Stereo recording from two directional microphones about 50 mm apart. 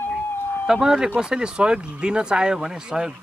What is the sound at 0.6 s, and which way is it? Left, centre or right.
Speech, centre.